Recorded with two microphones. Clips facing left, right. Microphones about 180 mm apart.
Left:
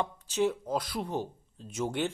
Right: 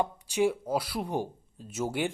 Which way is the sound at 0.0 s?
10° right (ahead or behind).